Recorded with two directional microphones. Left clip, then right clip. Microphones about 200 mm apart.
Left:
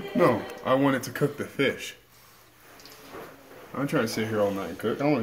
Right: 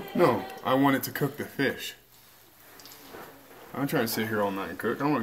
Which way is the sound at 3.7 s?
35° right (ahead or behind).